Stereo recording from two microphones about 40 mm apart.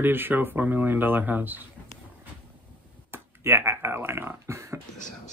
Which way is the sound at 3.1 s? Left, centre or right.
Right.